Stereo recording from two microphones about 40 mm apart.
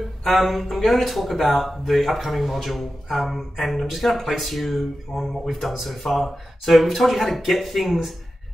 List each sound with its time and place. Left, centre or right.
0.2 s speech: centre